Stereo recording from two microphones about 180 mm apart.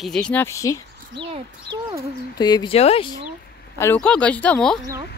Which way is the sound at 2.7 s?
35° left (ahead or behind).